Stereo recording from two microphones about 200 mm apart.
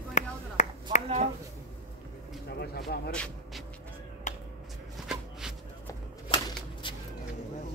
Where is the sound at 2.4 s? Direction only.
50° left (ahead or behind).